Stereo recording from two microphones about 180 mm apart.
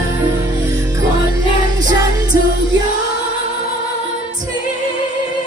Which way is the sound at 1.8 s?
20° right (ahead or behind).